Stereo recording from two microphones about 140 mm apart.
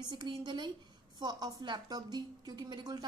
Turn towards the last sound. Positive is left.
turn(degrees=-30)  # may be behind; listen again after turning